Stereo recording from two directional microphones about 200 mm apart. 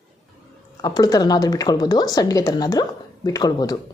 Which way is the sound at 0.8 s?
20° left (ahead or behind).